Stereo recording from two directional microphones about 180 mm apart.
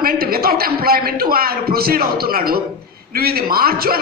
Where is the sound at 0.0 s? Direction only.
55° right (ahead or behind).